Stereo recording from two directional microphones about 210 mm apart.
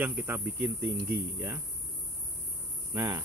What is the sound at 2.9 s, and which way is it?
Speech, 15° right (ahead or behind).